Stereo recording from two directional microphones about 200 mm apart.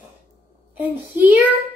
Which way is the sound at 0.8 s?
10° right (ahead or behind).